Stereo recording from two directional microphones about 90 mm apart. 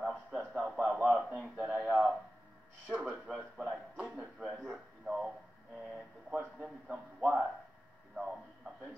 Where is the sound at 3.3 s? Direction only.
15° right (ahead or behind).